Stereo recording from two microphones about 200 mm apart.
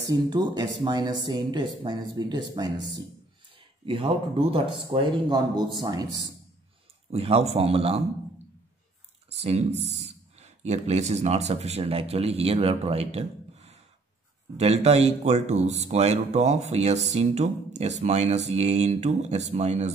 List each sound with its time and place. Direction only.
0.1 s speech: 20° right (ahead or behind)
7.1 s speech: 30° right (ahead or behind)
9.3 s speech: 30° right (ahead or behind)